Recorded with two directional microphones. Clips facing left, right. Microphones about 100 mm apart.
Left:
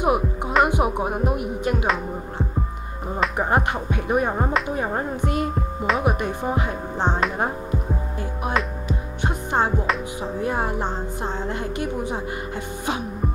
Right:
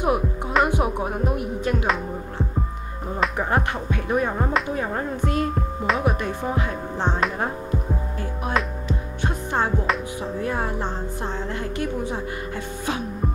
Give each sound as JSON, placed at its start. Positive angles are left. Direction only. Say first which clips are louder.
{"t": 0.0, "sound": "music", "louder": "left 1 dB", "side_deg": 5}
{"t": 8.8, "sound": "music", "louder": "even", "side_deg": 15}